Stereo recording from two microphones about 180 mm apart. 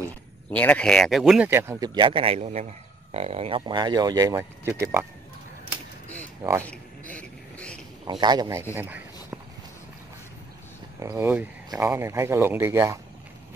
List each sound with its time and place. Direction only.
0.5 s speech: 5° left (ahead or behind); by 1.9 s 15° right (ahead or behind)
2.0 s a man's voice: 30° right (ahead or behind)
6.6 s a sound: 10° left (ahead or behind)
8.1 s a man's voice: 25° right (ahead or behind)
8.7 s a sound: 10° right (ahead or behind)
11.0 s speech: 15° right (ahead or behind)